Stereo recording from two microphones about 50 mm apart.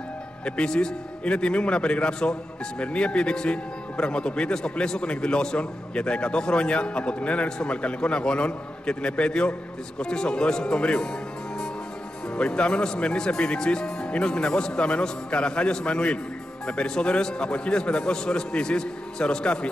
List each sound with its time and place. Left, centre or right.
0.5 s speech: centre
12.4 s a man's voice: centre